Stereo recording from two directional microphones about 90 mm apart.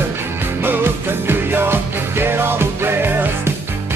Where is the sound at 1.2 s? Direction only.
25° right (ahead or behind).